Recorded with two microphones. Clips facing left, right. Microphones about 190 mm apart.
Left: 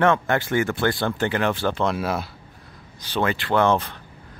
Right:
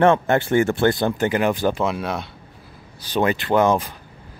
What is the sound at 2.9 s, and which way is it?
Speech, 15° right (ahead or behind).